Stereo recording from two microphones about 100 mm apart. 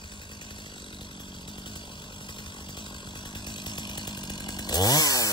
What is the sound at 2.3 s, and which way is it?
Chainsaw, 55° left (ahead or behind).